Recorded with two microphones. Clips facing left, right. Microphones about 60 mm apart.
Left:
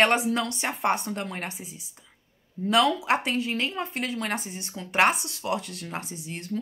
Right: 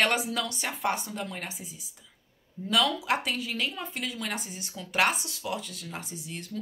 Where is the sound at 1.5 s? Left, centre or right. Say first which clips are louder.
Left 2 dB; centre.